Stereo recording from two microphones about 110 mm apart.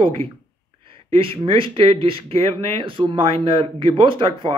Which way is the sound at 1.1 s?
55° right (ahead or behind).